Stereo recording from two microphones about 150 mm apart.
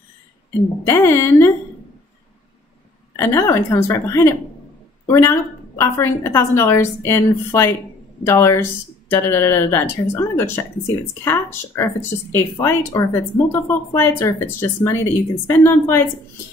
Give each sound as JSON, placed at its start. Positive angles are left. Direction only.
{"t": 0.8, "sound": "a woman's voice", "side_deg": 15}
{"t": 3.2, "sound": "a woman's voice", "side_deg": 20}